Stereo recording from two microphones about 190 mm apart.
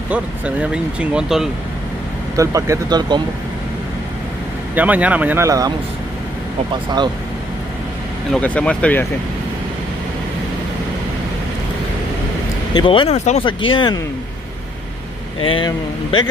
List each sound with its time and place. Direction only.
0.1 s speech: 5° right (ahead or behind)
2.3 s speech: 15° right (ahead or behind)
4.7 s speech: 10° right (ahead or behind)
8.3 s speech: 5° left (ahead or behind)
12.7 s speech: 25° left (ahead or behind)
13.5 s speech: 25° left (ahead or behind)
15.4 s speech: 25° left (ahead or behind)